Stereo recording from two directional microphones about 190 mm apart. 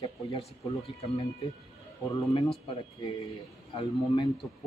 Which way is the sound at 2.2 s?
25° left (ahead or behind).